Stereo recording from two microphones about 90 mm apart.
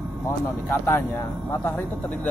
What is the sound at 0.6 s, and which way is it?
Speech, 25° left (ahead or behind).